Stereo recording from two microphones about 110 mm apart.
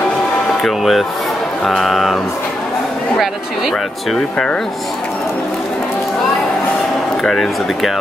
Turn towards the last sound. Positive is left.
turn(degrees=5)  # may be behind; listen again after turning